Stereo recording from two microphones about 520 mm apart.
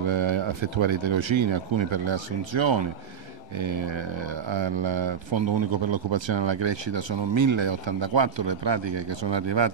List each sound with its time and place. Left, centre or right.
0.0 s speech: right